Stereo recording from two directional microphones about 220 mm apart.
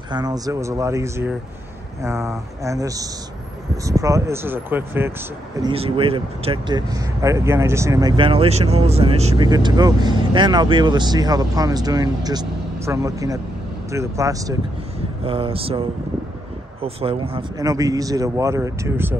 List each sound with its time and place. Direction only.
0.1 s a man's voice: 15° right (ahead or behind)
5.6 s a man's voice: 25° right (ahead or behind)
16.8 s a man's voice: 25° right (ahead or behind)